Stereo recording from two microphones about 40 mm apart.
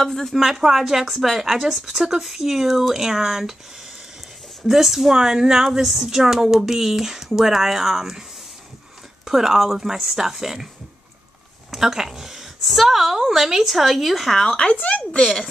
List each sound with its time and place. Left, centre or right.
0.0 s speech: centre
0.3 s a woman's voice: centre
4.6 s a woman's voice: centre
11.7 s a woman's voice: centre
14.3 s speech: centre
14.6 s speech: left